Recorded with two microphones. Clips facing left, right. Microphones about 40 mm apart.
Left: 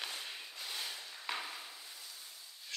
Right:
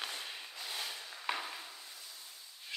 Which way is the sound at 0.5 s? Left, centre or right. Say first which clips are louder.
Right 1 dB; centre.